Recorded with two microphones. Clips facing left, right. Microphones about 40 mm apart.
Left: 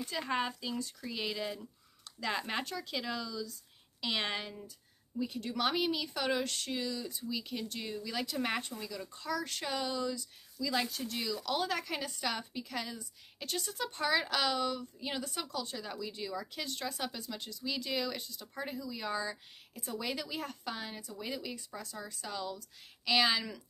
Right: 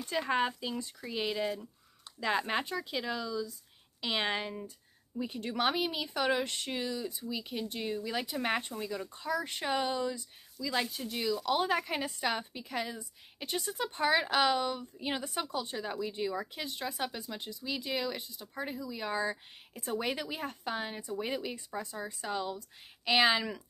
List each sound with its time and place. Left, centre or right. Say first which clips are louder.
0.2 s a woman's voice: right 4 dB; centre
10.6 s a woman's voice: even; centre
19.8 s a woman's voice: right 4 dB; right